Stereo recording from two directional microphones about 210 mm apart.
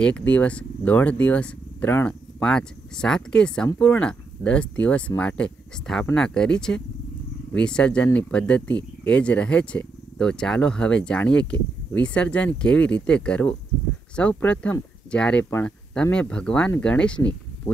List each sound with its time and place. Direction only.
0.0 s speech: 5° left (ahead or behind)